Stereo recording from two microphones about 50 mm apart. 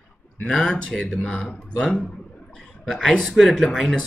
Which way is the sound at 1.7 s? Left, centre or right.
Centre.